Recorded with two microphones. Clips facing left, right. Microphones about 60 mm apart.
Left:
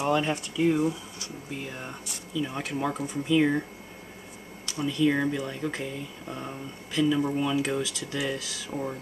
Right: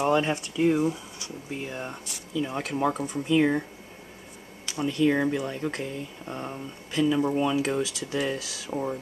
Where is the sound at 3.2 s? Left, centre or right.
Centre.